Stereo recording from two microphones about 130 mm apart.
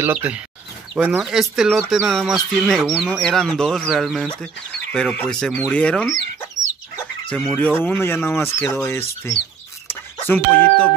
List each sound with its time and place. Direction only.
0.0 s speech: 15° right (ahead or behind); by 6.0 s 10° left (ahead or behind)
7.2 s speech: 5° left (ahead or behind)